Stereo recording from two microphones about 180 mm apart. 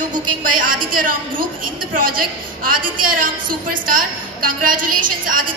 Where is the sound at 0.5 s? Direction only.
50° right (ahead or behind).